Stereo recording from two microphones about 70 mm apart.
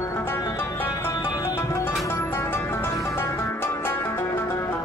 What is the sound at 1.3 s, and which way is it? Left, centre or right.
Music, left.